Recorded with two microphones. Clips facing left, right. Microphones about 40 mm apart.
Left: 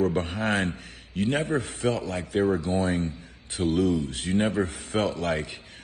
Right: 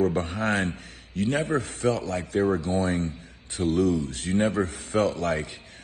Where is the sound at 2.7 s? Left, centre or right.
Left.